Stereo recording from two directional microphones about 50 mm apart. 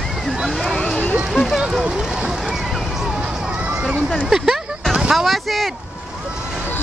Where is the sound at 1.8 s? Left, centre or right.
Centre.